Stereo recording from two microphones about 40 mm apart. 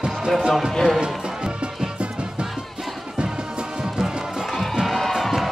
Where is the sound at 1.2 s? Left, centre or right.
Centre.